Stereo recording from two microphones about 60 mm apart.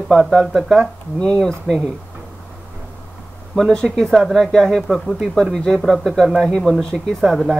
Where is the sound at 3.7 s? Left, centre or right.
Centre.